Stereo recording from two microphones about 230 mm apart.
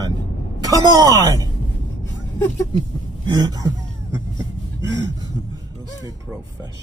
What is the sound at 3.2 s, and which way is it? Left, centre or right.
Speech, centre.